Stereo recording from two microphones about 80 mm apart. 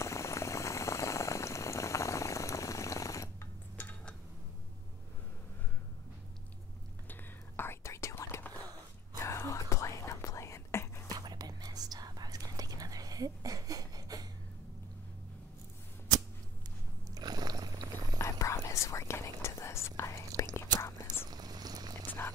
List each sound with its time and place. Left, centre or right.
0.0 s boiling: left
7.1 s whispering: left
11.1 s whispering: right
17.1 s a sound: right
18.2 s whispering: left
21.3 s a sound: right